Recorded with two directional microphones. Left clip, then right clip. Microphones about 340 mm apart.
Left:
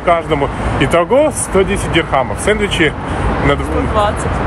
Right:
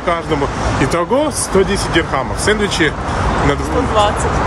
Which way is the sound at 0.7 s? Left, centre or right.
Centre.